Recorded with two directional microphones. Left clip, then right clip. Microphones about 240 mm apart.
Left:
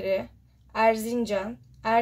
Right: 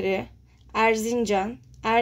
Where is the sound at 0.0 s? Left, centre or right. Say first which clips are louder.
Right 1 dB; right.